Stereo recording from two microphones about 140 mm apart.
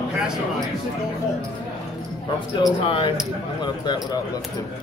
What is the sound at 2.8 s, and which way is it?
Speech, 40° left (ahead or behind).